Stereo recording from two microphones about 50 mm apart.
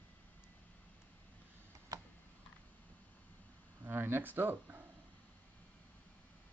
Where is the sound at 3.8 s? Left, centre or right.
Right.